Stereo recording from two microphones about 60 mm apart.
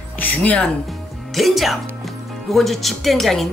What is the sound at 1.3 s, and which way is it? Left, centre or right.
Speech, centre.